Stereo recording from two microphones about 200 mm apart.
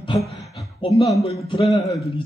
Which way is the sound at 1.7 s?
Centre (ahead or behind).